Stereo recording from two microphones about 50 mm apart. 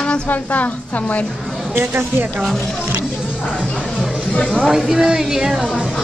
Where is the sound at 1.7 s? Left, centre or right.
Right.